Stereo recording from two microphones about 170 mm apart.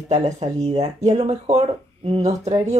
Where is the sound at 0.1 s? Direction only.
40° right (ahead or behind).